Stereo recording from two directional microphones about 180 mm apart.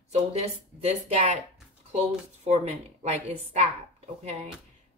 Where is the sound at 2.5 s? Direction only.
35° right (ahead or behind).